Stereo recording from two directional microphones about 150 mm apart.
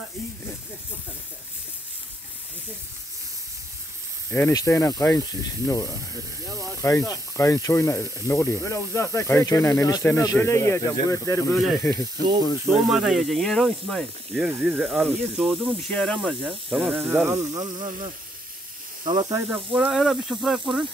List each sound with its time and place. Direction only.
4.3 s speech: 20° left (ahead or behind)
11.5 s speech: centre (ahead or behind)
11.8 s speech: 20° left (ahead or behind)
12.9 s speech: 5° right (ahead or behind); by 19.6 s 20° right (ahead or behind)
19.7 s speech: 5° right (ahead or behind)